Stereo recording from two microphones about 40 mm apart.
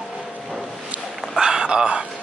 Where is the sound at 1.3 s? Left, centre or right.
Centre.